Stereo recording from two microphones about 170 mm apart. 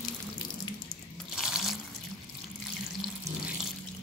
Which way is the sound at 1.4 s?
Centre (ahead or behind).